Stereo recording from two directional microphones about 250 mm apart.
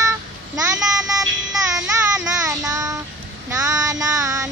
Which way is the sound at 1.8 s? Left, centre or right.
Centre.